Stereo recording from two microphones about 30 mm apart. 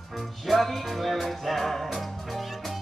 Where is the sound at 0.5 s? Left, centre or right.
Centre.